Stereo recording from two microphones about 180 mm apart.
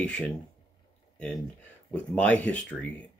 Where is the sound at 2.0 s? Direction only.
5° left (ahead or behind).